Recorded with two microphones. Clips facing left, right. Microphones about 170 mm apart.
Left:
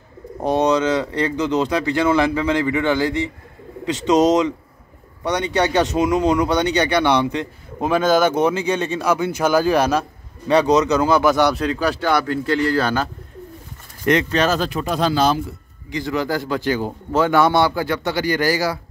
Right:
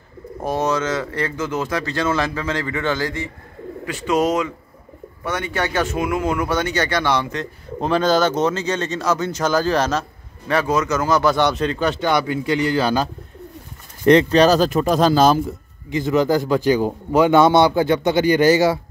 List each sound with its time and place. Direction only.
0.4 s speech: 15° left (ahead or behind)
12.3 s speech: 10° right (ahead or behind)
14.0 s speech: 35° right (ahead or behind)
15.9 s a man's voice: 20° right (ahead or behind)